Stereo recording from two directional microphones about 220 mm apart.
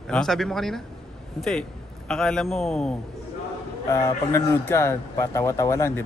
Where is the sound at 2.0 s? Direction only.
5° left (ahead or behind).